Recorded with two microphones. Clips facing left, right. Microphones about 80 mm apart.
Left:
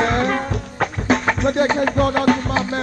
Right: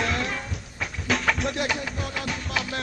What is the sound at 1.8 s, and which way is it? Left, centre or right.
Music, left.